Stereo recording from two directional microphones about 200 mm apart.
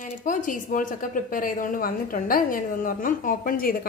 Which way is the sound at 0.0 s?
40° left (ahead or behind).